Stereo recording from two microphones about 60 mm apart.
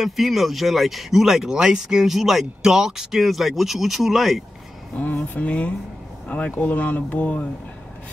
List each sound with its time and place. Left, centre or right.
0.0 s speech: centre
4.9 s speech: left